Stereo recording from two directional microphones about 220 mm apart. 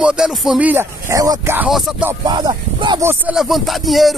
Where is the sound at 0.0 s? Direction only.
5° right (ahead or behind).